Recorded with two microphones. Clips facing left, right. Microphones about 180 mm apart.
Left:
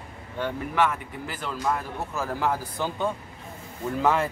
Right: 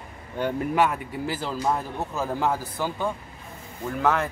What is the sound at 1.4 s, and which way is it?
Speech, 30° right (ahead or behind).